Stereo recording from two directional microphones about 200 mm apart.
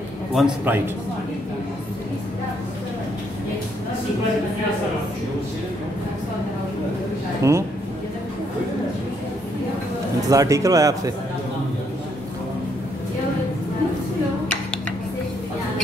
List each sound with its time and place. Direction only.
0.3 s a man's voice: centre (ahead or behind)
7.4 s speech: 15° right (ahead or behind)
10.3 s speech: 15° right (ahead or behind)